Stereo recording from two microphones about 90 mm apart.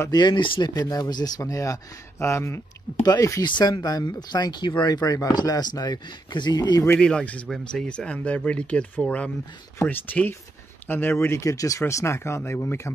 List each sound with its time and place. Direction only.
0.1 s speech: 55° left (ahead or behind); by 2.6 s 30° left (ahead or behind)
3.0 s speech: 50° left (ahead or behind)
7.0 s speech: 10° left (ahead or behind); by 12.9 s 30° left (ahead or behind)